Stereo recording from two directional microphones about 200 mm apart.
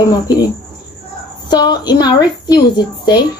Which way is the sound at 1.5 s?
20° left (ahead or behind).